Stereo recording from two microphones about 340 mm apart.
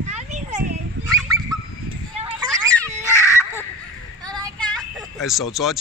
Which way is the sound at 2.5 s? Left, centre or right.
Centre.